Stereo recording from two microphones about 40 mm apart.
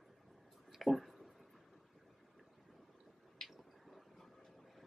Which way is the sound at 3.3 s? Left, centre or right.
Centre.